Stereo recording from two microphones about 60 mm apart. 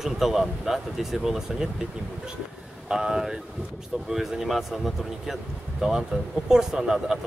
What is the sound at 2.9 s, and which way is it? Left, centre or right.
Speech, centre.